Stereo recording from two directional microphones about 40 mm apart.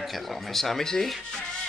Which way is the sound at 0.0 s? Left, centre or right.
Centre.